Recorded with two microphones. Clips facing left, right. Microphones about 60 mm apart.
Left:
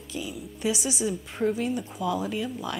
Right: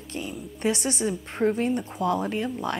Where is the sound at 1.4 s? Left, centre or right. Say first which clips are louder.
Right 3 dB; right.